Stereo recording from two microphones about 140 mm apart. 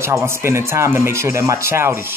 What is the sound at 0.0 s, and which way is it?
Speech, 20° right (ahead or behind).